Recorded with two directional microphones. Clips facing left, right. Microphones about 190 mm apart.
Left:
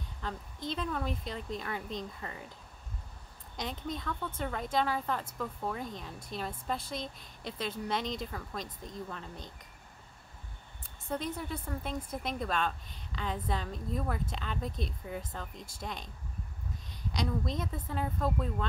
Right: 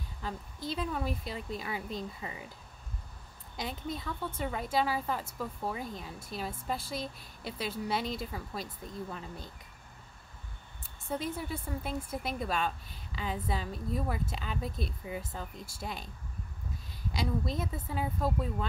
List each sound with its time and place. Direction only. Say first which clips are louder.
0.2 s speech: even; 5° right (ahead or behind)
3.5 s speech: even; 5° right (ahead or behind)
11.1 s speech: right 1 dB; 5° right (ahead or behind)
17.1 s speech: even; 5° right (ahead or behind)